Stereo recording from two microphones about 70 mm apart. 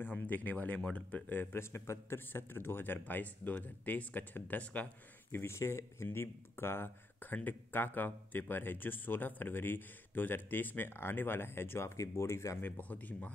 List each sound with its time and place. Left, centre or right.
0.0 s speech: left
5.3 s speech: left
12.6 s speech: left